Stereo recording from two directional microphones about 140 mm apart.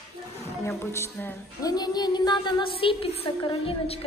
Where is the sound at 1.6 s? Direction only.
30° left (ahead or behind).